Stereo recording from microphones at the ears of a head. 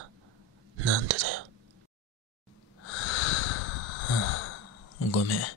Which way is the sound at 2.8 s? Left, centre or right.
Left.